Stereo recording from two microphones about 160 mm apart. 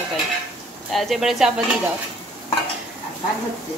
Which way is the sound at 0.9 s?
Centre (ahead or behind).